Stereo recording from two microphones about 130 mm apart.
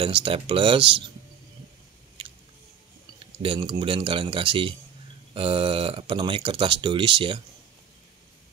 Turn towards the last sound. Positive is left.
turn(degrees=-40)  # may be behind; listen again after turning